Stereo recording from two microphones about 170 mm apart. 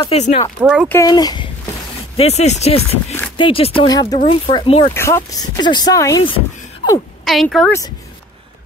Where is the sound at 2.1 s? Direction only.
40° left (ahead or behind).